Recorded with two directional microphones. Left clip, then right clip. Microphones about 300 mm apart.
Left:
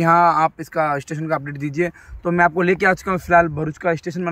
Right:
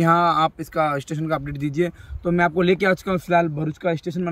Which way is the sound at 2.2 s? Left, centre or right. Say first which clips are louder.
Left 3 dB; centre.